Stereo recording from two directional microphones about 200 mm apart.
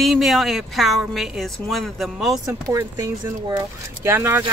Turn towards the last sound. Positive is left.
turn(degrees=-15)  # may be behind; listen again after turning